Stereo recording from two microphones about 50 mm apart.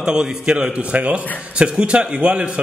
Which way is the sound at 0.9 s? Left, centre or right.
Right.